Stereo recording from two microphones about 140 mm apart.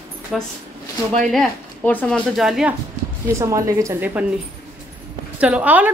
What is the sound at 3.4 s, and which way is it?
Speech, 25° right (ahead or behind).